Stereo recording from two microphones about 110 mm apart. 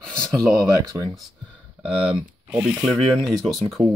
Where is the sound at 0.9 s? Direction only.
20° right (ahead or behind).